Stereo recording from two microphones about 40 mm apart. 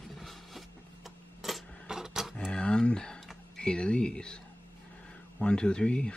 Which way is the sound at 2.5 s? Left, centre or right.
Left.